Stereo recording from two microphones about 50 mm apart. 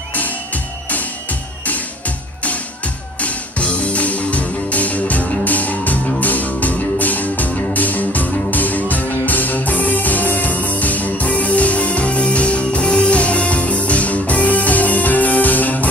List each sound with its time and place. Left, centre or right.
1.7 s music: left